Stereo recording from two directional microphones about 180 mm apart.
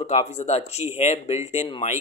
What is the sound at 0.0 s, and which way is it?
A man's voice, 35° left (ahead or behind).